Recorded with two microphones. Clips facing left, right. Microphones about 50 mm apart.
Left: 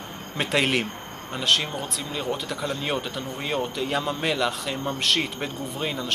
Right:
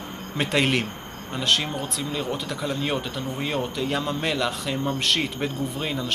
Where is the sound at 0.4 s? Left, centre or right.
Centre.